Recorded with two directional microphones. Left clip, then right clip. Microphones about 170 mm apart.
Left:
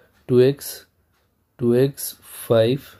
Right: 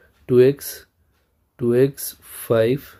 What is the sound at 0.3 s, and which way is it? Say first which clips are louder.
Speech: right 2 dB; 15° right (ahead or behind).